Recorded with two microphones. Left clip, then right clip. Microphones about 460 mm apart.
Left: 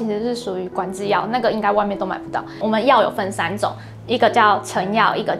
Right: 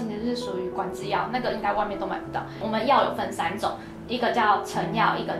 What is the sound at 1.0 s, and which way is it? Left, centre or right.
A woman's voice, left.